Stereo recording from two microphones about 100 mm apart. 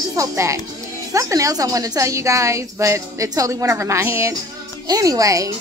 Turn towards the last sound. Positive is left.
turn(degrees=-35)  # may be behind; listen again after turning